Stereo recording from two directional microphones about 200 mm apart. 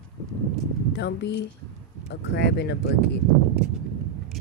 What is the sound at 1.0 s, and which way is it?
Speech, 60° left (ahead or behind).